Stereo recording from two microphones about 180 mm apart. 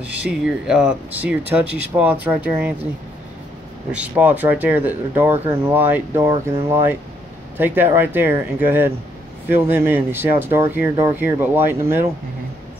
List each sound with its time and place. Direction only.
0.0 s speech: 10° right (ahead or behind)
3.9 s speech: 5° right (ahead or behind)